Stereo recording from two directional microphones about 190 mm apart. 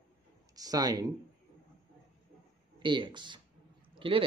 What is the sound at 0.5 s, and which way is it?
Speech, 20° right (ahead or behind).